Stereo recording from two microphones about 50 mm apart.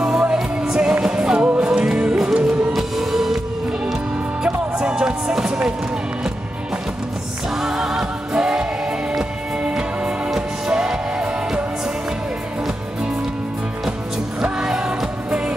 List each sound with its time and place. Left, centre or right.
0.0 s music: centre
4.4 s music: centre
7.6 s music: centre
14.4 s music: centre